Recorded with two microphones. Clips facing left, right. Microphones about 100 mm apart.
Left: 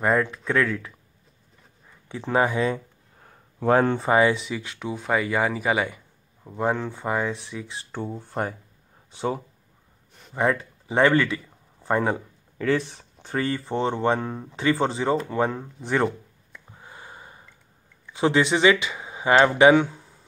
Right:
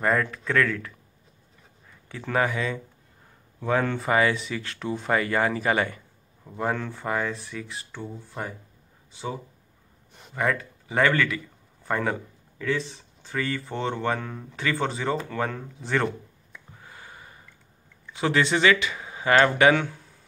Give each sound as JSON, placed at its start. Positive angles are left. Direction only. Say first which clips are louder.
{"t": 0.5, "sound": "speech", "louder": "right 1 dB", "side_deg": 20}
{"t": 2.0, "sound": "speech", "louder": "left 3 dB", "side_deg": 25}
{"t": 3.7, "sound": "speech", "louder": "left 3 dB", "side_deg": 30}
{"t": 7.9, "sound": "speech", "louder": "left 10 dB", "side_deg": 50}
{"t": 10.3, "sound": "a man's voice", "louder": "left 3 dB", "side_deg": 25}
{"t": 12.5, "sound": "speech", "louder": "left 4 dB", "side_deg": 50}
{"t": 13.4, "sound": "speech", "louder": "left 4 dB", "side_deg": 30}
{"t": 16.7, "sound": "sniff", "louder": "left 3 dB", "side_deg": 25}
{"t": 18.1, "sound": "speech", "louder": "left 3 dB", "side_deg": 20}